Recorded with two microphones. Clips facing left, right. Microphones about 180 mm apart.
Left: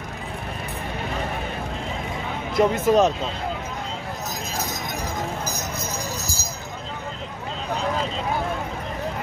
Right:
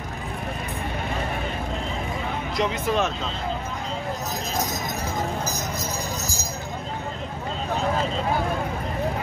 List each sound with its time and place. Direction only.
2.5 s speech: 50° left (ahead or behind)